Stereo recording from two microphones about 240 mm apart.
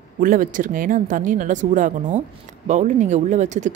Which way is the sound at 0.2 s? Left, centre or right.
Right.